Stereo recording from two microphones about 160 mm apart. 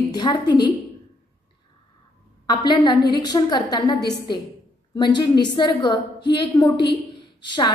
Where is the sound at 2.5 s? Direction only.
25° left (ahead or behind).